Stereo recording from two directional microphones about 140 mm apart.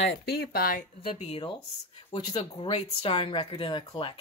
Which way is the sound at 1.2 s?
45° left (ahead or behind).